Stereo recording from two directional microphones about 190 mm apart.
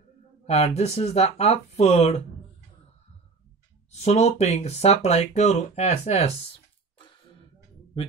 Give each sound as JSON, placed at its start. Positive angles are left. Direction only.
{"t": 0.5, "sound": "speech", "side_deg": 35}
{"t": 3.9, "sound": "speech", "side_deg": 35}